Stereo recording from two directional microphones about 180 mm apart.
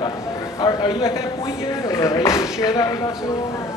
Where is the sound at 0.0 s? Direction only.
20° left (ahead or behind).